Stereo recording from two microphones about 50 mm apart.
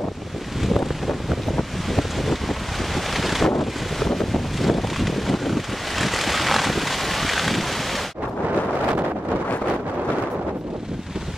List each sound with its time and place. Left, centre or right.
0.7 s wind noise: centre
3.2 s wind noise: centre